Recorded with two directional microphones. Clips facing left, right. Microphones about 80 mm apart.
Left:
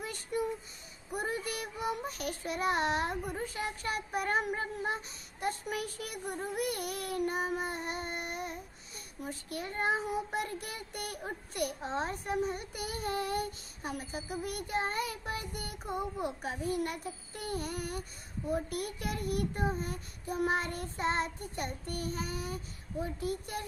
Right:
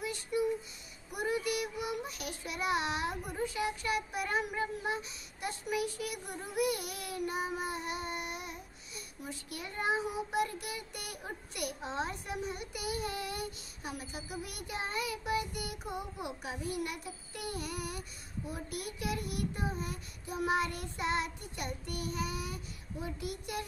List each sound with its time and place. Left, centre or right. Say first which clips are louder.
0.0 s child singing: right 2 dB; left